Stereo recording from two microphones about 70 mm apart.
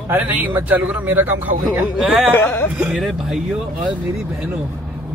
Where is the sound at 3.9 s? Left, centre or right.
Right.